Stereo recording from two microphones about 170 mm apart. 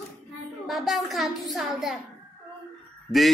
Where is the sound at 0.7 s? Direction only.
Centre (ahead or behind).